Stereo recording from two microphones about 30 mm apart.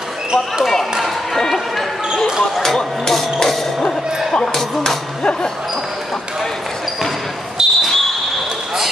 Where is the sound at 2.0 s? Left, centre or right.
Centre.